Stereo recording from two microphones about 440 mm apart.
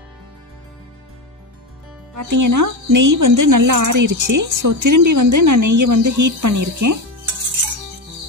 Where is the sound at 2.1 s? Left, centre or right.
Right.